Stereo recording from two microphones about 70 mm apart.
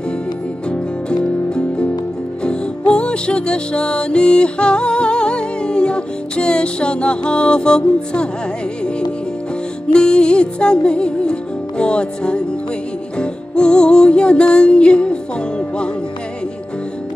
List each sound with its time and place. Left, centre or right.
0.7 s music: centre
9.9 s music: centre